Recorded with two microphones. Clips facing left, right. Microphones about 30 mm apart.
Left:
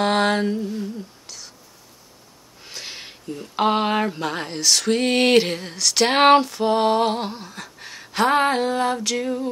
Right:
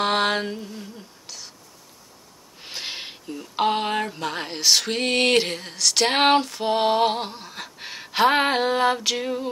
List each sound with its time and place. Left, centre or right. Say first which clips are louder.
0.0 s mantra: left 2 dB; centre
0.7 s humming: left 9 dB; centre
2.6 s a sound: right 3 dB; right
3.5 s music: left 3 dB; centre
4.5 s music: left 1 dB; centre
7.4 s a sound: right 1 dB; centre